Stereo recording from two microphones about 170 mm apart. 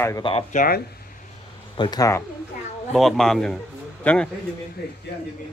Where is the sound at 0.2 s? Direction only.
30° left (ahead or behind).